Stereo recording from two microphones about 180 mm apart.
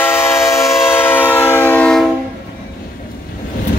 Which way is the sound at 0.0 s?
15° left (ahead or behind).